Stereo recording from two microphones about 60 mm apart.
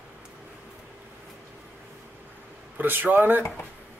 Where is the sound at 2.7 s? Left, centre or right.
Right.